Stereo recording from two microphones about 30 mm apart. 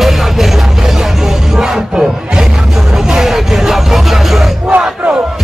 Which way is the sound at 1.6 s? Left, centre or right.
Right.